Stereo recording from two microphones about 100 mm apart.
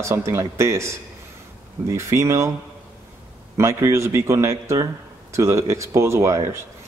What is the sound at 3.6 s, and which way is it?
Speech, 30° right (ahead or behind).